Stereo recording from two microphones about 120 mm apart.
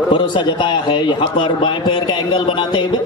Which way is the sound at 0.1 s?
40° left (ahead or behind).